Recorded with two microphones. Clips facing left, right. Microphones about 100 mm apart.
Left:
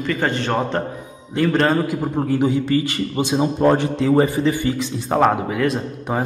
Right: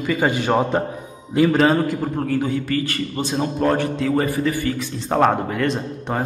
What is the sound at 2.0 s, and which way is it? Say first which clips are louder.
A man's voice: left 3 dB; 15° left (ahead or behind).